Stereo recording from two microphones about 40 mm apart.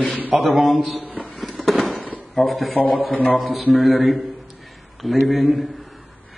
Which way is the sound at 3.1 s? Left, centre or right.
Left.